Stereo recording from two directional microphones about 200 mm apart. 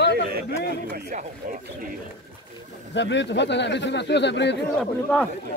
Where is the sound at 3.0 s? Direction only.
60° left (ahead or behind).